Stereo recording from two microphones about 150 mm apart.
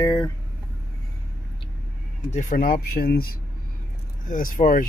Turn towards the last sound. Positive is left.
turn(degrees=65)  # may be behind; listen again after turning